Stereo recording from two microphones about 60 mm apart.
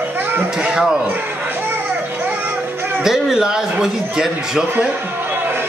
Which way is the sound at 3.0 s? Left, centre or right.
Centre.